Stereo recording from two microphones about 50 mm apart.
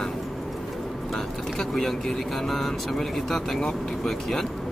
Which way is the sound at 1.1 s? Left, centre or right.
Centre.